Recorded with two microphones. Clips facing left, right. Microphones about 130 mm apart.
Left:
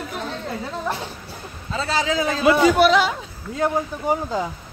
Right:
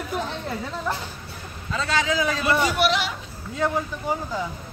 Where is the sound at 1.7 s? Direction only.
30° left (ahead or behind).